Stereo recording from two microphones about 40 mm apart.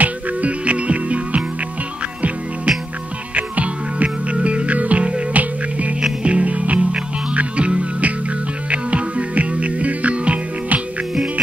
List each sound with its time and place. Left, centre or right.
0.0 s music: right
3.3 s music: right